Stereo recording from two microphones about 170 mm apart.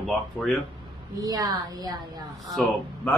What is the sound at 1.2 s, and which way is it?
Speech, 20° right (ahead or behind).